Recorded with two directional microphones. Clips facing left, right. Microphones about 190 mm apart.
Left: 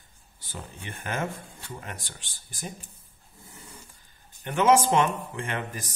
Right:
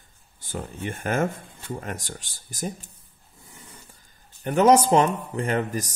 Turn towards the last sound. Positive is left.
turn(degrees=-40)  # may be behind; listen again after turning